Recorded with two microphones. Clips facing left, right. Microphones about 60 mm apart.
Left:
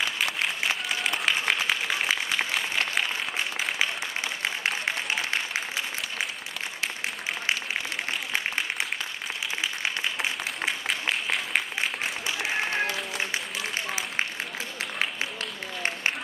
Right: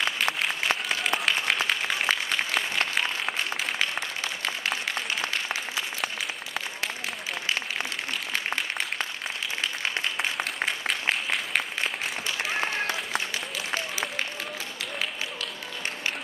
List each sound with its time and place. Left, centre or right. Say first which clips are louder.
0.0 s applause: right 1 dB; centre
10.6 s applause: left 1 dB; centre
13.3 s a sound: even; left